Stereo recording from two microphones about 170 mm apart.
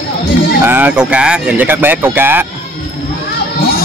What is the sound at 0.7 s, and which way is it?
Speech, 10° right (ahead or behind).